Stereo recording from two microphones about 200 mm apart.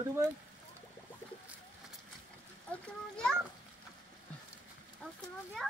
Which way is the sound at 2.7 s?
5° left (ahead or behind).